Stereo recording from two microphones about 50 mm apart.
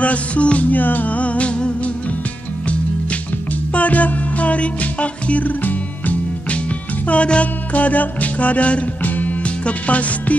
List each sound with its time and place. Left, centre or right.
0.0 s music: left
3.7 s music: left